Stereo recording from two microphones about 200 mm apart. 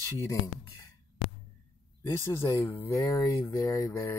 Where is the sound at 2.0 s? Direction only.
10° left (ahead or behind).